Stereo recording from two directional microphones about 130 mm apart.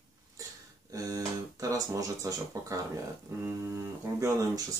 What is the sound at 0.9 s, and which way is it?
Speech, 25° right (ahead or behind).